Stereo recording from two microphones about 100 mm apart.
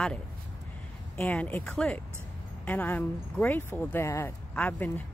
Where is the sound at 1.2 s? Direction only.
15° left (ahead or behind).